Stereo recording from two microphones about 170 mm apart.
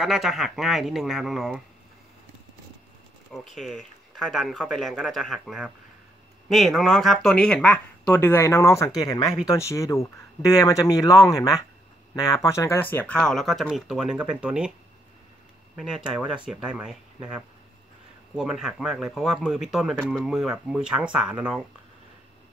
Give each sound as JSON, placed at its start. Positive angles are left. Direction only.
{"t": 0.0, "sound": "speech", "side_deg": 0}
{"t": 3.3, "sound": "speech", "side_deg": 0}
{"t": 15.7, "sound": "speech", "side_deg": -5}
{"t": 18.3, "sound": "speech", "side_deg": -5}